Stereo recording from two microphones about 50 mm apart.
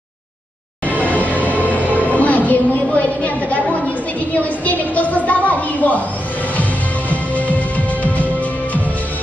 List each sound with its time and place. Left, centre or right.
0.8 s music: left
2.0 s a sound: left
7.1 s music: left